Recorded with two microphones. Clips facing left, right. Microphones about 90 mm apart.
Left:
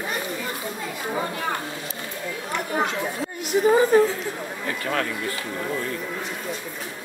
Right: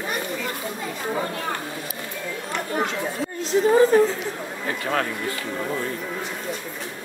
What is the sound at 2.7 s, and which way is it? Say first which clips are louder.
Speech: even; 15° left (ahead or behind).